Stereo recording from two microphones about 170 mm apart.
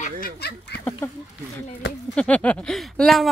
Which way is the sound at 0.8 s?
15° left (ahead or behind).